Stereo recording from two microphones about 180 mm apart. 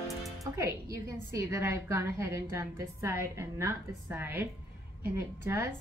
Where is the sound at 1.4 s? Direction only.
15° right (ahead or behind).